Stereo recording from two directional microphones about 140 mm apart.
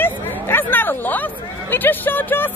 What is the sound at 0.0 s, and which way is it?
Speech, 15° left (ahead or behind).